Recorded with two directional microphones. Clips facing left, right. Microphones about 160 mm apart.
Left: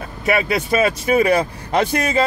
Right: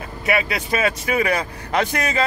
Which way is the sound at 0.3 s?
30° left (ahead or behind).